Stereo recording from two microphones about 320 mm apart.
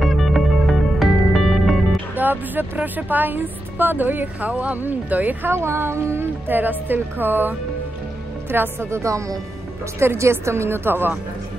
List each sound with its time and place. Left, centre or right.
0.0 s music: centre
8.5 s speech: centre